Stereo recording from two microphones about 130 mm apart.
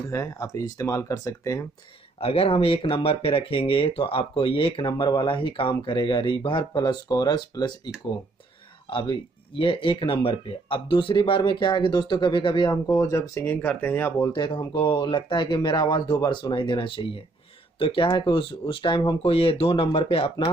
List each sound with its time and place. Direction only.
0.1 s speech: 25° left (ahead or behind)
2.1 s speech: 45° left (ahead or behind)
8.9 s speech: 40° left (ahead or behind); by 14.4 s 25° left (ahead or behind)
14.4 s speech: 35° left (ahead or behind)